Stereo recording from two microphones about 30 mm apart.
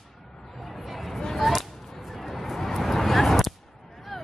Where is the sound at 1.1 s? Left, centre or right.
Centre.